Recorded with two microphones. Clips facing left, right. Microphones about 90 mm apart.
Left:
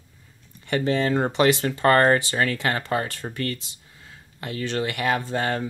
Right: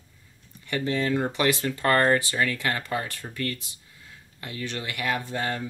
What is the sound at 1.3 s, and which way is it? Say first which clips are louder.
Speech: left 5 dB; 25° left (ahead or behind).